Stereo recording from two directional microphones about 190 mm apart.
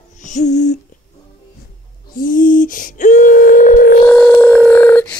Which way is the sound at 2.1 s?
45° left (ahead or behind).